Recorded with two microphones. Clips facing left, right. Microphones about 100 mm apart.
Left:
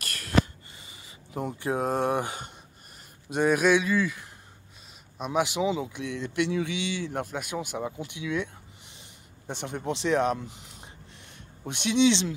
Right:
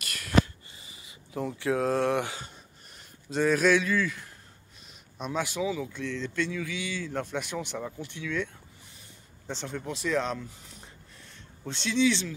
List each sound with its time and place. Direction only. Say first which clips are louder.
0.0 s a sound: even; 45° left (ahead or behind)
1.8 s a man's voice: even; 15° left (ahead or behind)
3.3 s a man's voice: left 1 dB; 15° left (ahead or behind)
5.3 s speech: left 4 dB; 20° left (ahead or behind)
7.2 s a man's voice: even; 5° left (ahead or behind)
9.5 s speech: left 3 dB; 20° left (ahead or behind)